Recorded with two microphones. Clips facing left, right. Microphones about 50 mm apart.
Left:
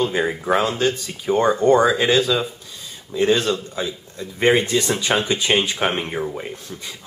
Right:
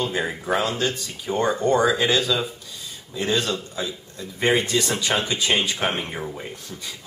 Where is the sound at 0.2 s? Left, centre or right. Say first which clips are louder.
Left 4 dB; centre.